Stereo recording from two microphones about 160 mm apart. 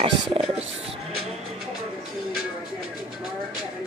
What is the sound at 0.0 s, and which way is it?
Speech, 35° right (ahead or behind).